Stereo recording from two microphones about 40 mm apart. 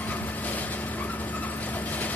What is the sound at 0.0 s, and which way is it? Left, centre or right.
Vehicle, left.